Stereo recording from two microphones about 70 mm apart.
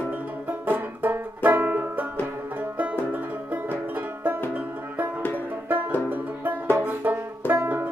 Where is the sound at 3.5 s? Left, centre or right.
Right.